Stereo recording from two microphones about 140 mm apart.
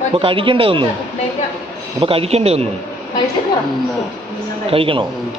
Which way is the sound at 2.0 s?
40° right (ahead or behind).